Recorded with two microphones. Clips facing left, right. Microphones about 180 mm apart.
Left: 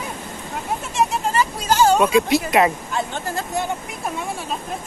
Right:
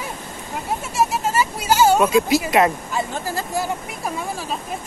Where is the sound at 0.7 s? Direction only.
5° right (ahead or behind).